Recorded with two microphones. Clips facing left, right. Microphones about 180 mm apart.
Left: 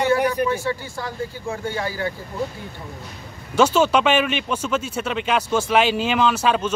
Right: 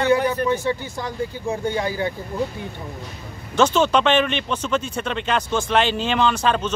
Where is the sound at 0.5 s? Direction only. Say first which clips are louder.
Right 2 dB; 20° right (ahead or behind).